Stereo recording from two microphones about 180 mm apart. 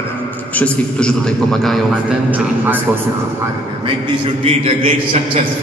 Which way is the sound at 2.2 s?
10° right (ahead or behind).